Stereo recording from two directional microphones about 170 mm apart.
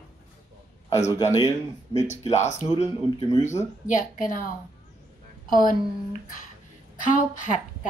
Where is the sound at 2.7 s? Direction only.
25° left (ahead or behind).